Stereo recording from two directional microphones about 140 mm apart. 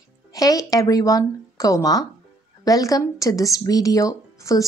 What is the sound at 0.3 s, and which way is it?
Speech, 25° left (ahead or behind).